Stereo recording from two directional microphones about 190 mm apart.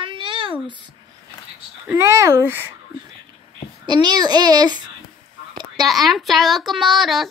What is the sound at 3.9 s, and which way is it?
Speech, 20° right (ahead or behind).